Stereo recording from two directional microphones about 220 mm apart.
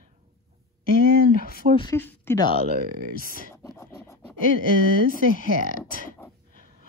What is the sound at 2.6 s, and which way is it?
Speech, 40° right (ahead or behind).